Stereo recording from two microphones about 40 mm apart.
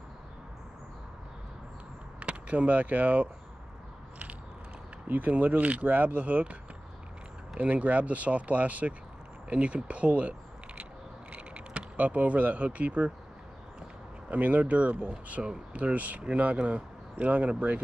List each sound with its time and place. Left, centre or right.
2.1 s speech: right
5.0 s speech: right
7.5 s speech: right
11.3 s speech: right
14.3 s speech: right